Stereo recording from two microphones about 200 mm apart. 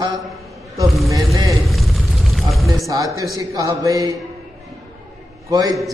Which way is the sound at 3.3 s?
20° right (ahead or behind).